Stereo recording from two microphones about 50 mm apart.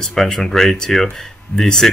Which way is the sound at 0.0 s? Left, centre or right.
Centre.